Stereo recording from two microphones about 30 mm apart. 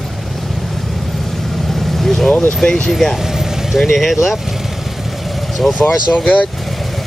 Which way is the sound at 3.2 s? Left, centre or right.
Centre.